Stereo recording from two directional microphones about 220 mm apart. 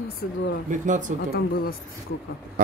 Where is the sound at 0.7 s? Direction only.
35° right (ahead or behind).